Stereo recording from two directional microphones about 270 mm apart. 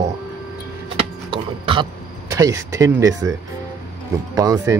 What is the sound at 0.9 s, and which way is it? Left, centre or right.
Mechanisms, centre.